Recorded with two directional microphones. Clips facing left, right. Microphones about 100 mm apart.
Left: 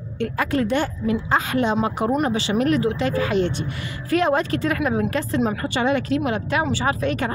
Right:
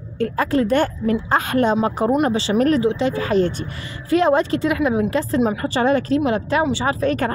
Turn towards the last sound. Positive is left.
turn(degrees=-35)  # may be behind; listen again after turning